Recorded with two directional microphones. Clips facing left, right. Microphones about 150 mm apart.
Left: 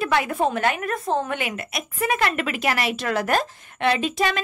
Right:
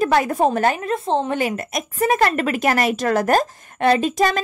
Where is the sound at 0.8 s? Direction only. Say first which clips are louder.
Right 4 dB; 25° right (ahead or behind).